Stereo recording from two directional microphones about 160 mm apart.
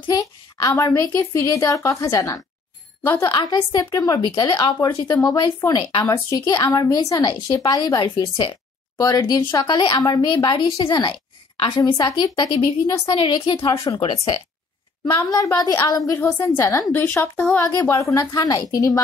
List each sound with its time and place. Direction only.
0.0 s speech: 20° left (ahead or behind)
15.1 s a woman's voice: 20° left (ahead or behind)